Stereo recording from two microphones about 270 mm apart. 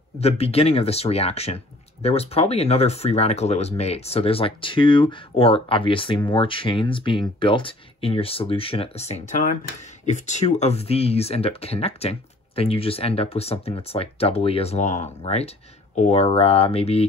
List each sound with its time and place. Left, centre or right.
0.2 s speech: left